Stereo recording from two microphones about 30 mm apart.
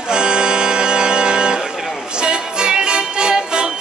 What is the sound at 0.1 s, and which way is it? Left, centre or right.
Music, right.